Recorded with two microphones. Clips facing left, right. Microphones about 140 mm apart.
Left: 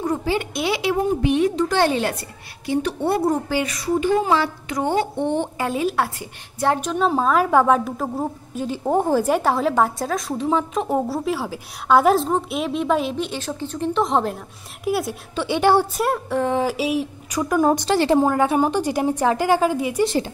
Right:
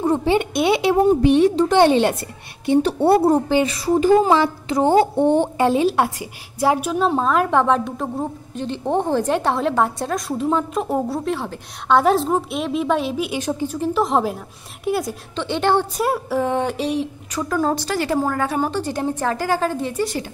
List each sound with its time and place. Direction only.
0.0 s a woman's voice: 25° right (ahead or behind)
5.6 s a woman's voice: 30° right (ahead or behind)
5.9 s a woman's voice: 10° right (ahead or behind)
13.7 s a woman's voice: centre (ahead or behind)
16.1 s a woman's voice: centre (ahead or behind)